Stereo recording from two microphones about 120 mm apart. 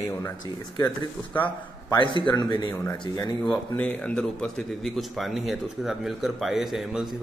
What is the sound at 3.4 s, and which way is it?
Speech, 5° left (ahead or behind).